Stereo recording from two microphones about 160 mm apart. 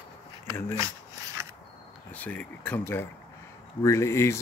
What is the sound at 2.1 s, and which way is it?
Speech, 10° left (ahead or behind).